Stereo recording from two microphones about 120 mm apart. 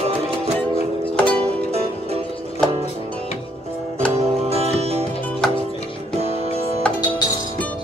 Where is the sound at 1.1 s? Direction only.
10° left (ahead or behind).